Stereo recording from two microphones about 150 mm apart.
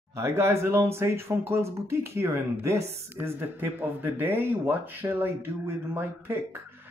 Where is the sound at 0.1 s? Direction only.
20° right (ahead or behind).